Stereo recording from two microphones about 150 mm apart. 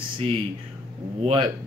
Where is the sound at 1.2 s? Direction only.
35° right (ahead or behind).